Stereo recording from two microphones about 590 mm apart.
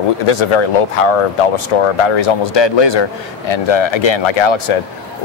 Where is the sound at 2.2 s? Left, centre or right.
Left.